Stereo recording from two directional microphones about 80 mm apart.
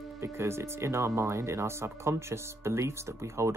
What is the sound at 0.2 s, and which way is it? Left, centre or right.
Speech, right.